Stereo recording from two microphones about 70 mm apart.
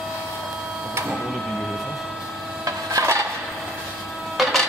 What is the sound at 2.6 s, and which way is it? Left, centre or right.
Filing, right.